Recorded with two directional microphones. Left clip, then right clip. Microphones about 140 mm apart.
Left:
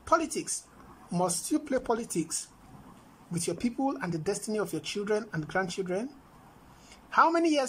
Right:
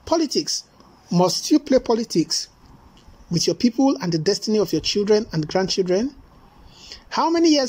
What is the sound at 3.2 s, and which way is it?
Speech, 25° right (ahead or behind).